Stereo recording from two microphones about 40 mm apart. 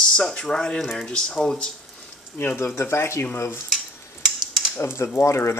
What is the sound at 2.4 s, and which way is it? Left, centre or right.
Speech, left.